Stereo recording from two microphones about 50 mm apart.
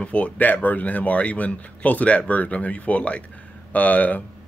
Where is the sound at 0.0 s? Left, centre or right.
Left.